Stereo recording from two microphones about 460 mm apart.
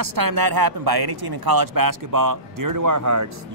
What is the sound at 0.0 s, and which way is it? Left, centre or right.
Speech, right.